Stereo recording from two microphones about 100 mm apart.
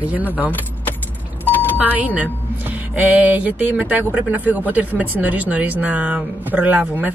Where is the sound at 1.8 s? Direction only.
15° right (ahead or behind).